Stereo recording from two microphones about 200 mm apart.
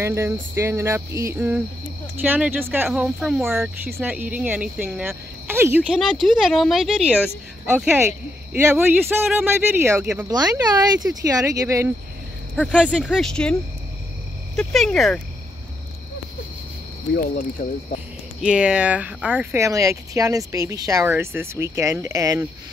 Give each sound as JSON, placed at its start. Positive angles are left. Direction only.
{"t": 0.0, "sound": "speech", "side_deg": -15}
{"t": 17.6, "sound": "speech", "side_deg": 40}
{"t": 18.4, "sound": "speech", "side_deg": -5}